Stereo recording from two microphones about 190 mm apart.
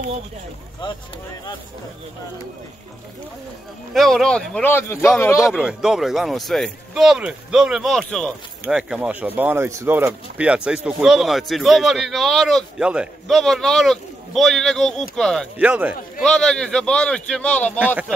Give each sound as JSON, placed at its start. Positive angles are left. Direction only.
{"t": 0.8, "sound": "speech", "side_deg": 25}
{"t": 3.9, "sound": "a man's voice", "side_deg": 0}
{"t": 5.4, "sound": "a man's voice", "side_deg": -5}
{"t": 15.5, "sound": "a man's voice", "side_deg": -5}